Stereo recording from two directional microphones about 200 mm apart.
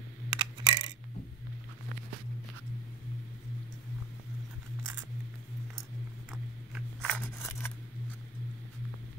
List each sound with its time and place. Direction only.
0.3 s coin: 25° right (ahead or behind)
6.3 s scissors: 5° left (ahead or behind)